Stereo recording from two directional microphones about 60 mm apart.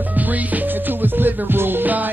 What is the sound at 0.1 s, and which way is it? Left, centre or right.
Music, right.